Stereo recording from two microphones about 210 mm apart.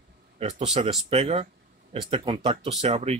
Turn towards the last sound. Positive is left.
turn(degrees=-30)  # may be behind; listen again after turning